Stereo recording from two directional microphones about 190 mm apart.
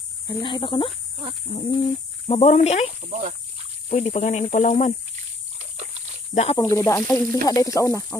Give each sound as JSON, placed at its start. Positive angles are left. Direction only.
{"t": 0.3, "sound": "speech", "side_deg": 25}
{"t": 3.1, "sound": "speech", "side_deg": -40}
{"t": 3.9, "sound": "speech", "side_deg": 35}
{"t": 5.6, "sound": "dog", "side_deg": -35}
{"t": 6.3, "sound": "speech", "side_deg": 35}
{"t": 6.6, "sound": "speech", "side_deg": 15}